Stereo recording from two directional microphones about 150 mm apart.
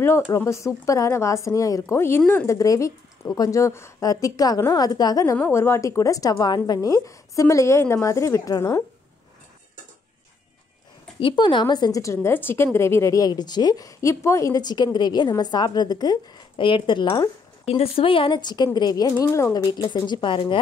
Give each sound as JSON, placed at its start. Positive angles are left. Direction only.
{"t": 0.0, "sound": "speech", "side_deg": 15}
{"t": 11.1, "sound": "speech", "side_deg": 35}
{"t": 17.6, "sound": "speech", "side_deg": 40}